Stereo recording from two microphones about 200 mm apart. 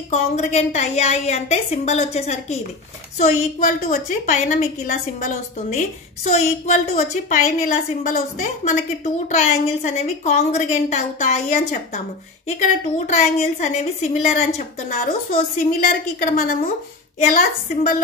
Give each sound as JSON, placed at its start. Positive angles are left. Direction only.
{"t": 0.1, "sound": "a woman's voice", "side_deg": 35}